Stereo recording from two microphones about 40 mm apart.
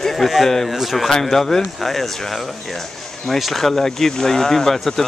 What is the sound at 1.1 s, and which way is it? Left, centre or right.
Speech, centre.